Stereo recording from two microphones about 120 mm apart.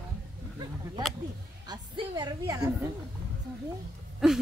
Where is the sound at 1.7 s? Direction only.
35° right (ahead or behind).